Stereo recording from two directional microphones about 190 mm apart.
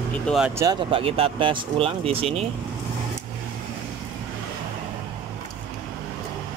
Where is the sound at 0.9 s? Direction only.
30° right (ahead or behind).